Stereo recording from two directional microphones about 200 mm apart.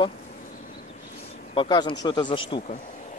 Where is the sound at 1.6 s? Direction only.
20° left (ahead or behind).